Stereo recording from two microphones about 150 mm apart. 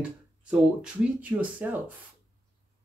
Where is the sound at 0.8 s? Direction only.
10° right (ahead or behind).